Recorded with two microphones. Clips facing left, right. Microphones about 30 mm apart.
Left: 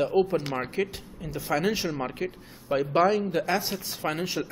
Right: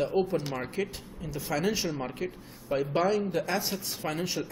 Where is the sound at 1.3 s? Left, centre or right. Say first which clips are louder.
Left 3 dB; left.